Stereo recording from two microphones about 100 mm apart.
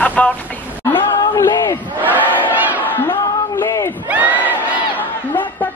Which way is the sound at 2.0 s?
15° right (ahead or behind).